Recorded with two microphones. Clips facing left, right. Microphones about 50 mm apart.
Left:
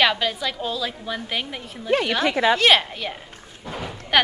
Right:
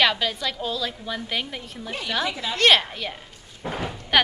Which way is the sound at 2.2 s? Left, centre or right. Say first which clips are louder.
Left 7 dB; left.